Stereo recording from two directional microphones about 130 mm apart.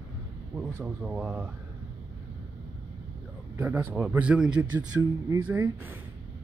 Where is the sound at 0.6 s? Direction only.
10° right (ahead or behind).